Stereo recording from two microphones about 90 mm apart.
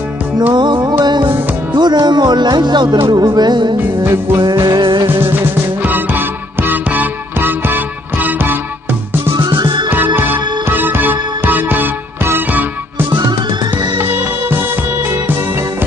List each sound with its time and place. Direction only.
0.5 s music: 60° right (ahead or behind)
1.8 s speech: 55° right (ahead or behind)
4.0 s music: 25° right (ahead or behind)
4.7 s music: 65° right (ahead or behind)
5.0 s music: 25° right (ahead or behind)
9.4 s music: 65° right (ahead or behind)
9.8 s music: 20° right (ahead or behind)